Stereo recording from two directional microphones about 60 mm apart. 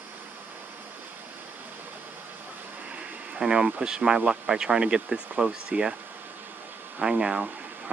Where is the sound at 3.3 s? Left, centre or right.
Centre.